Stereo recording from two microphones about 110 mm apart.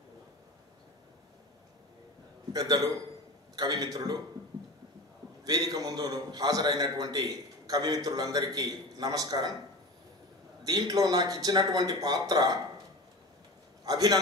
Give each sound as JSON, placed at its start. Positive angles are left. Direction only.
{"t": 2.5, "sound": "a man's voice", "side_deg": -35}
{"t": 5.4, "sound": "a man's voice", "side_deg": -35}
{"t": 10.6, "sound": "a man's voice", "side_deg": -35}
{"t": 13.8, "sound": "a man's voice", "side_deg": -35}